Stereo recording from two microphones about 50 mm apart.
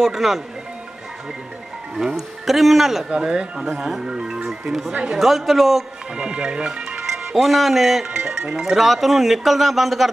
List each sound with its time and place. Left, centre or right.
0.0 s speech: centre
2.0 s speech: centre
6.1 s speech: centre
7.3 s speech: centre
8.1 s speech: centre